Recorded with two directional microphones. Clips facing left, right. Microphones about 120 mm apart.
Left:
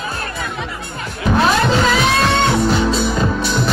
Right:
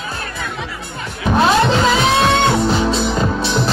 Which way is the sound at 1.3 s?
Centre (ahead or behind).